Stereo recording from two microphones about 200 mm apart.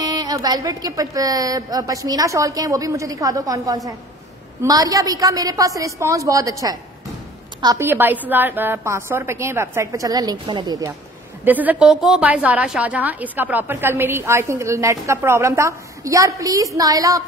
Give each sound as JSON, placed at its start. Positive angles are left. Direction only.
{"t": 0.0, "sound": "a woman's voice", "side_deg": -20}
{"t": 11.4, "sound": "a woman's voice", "side_deg": -10}